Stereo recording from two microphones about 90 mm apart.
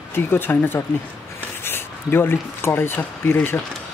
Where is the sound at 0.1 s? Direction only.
25° left (ahead or behind).